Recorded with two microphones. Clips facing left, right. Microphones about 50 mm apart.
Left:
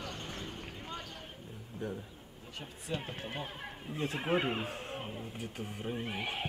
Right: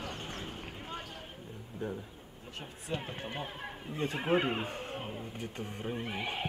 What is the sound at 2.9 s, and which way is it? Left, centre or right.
A man's voice, centre.